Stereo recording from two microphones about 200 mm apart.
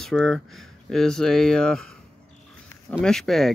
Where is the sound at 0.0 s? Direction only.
Centre (ahead or behind).